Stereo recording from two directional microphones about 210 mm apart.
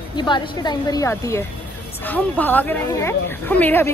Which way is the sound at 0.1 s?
20° left (ahead or behind).